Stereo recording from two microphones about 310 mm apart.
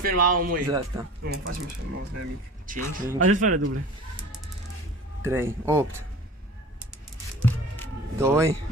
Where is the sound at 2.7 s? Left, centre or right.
Right.